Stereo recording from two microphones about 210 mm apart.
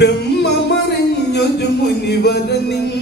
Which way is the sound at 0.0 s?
55° left (ahead or behind).